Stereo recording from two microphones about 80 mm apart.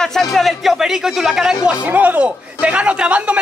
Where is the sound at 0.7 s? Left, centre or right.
Centre.